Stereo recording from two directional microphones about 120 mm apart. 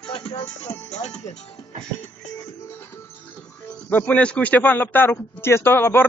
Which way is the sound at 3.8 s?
15° left (ahead or behind).